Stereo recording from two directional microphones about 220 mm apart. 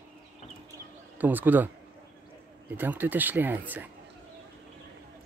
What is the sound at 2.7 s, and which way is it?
Speech, 10° right (ahead or behind).